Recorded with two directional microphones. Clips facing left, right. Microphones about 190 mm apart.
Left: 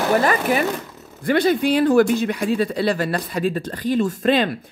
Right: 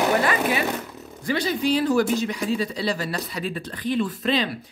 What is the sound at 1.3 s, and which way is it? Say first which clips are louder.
Speech: left 5 dB; 55° left (ahead or behind).